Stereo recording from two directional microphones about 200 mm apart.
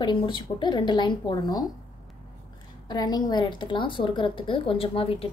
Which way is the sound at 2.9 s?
20° left (ahead or behind).